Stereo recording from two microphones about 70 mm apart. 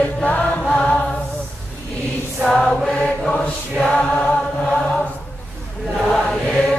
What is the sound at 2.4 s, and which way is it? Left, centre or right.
Choir, centre.